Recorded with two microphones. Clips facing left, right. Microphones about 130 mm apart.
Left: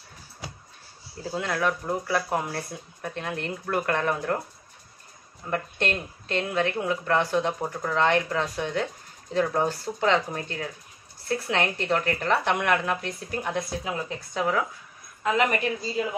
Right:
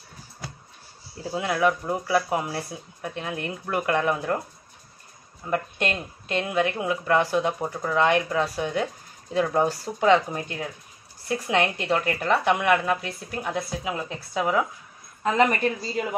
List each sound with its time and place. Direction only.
1.3 s speech: 10° right (ahead or behind)
5.5 s speech: 10° right (ahead or behind)
15.2 s a woman's voice: 35° right (ahead or behind)